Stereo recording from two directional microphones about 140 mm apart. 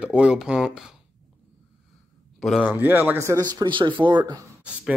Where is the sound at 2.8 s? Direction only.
10° right (ahead or behind).